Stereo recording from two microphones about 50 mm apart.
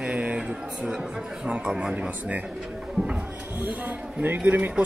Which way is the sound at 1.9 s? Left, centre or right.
Right.